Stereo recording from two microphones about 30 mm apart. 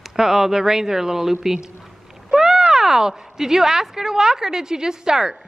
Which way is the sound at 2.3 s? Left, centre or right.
Centre.